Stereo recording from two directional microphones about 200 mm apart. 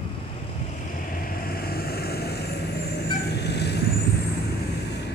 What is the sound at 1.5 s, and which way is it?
Vehicle, 50° left (ahead or behind).